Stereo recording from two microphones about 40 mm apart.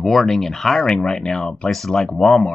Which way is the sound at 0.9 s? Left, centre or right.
Centre.